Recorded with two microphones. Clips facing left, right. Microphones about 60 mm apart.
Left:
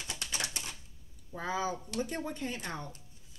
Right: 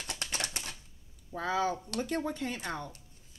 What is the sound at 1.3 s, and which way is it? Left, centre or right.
A woman's voice, right.